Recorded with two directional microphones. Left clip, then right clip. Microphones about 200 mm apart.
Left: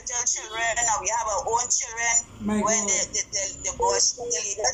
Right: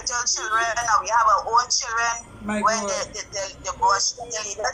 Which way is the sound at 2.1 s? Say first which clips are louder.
Left 1 dB; 30° left (ahead or behind).